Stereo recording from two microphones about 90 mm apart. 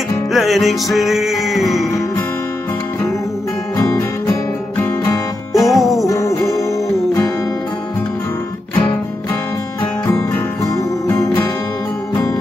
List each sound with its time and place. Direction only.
0.3 s music: centre (ahead or behind)
3.7 s music: 40° left (ahead or behind)
5.5 s music: centre (ahead or behind)
6.0 s music: 35° left (ahead or behind)
10.0 s music: 35° left (ahead or behind)